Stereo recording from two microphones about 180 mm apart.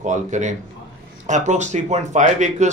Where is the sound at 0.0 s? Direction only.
40° right (ahead or behind).